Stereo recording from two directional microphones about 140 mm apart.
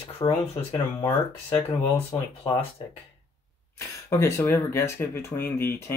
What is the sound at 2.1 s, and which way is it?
Speech, 35° left (ahead or behind).